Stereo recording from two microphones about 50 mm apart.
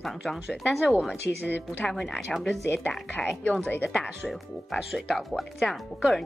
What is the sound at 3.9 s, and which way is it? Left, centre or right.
A woman's voice, centre.